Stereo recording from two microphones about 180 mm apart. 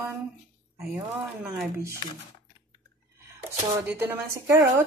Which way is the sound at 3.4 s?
10° right (ahead or behind).